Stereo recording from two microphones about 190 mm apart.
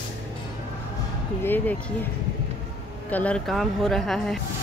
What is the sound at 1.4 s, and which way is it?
Speech, 10° left (ahead or behind).